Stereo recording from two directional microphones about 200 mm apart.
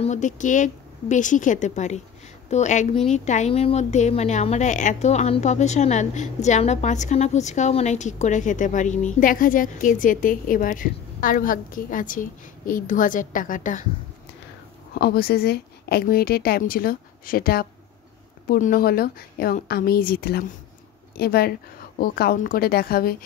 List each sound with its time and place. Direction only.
0.0 s a woman's voice: 35° left (ahead or behind)
15.0 s a woman's voice: 50° left (ahead or behind)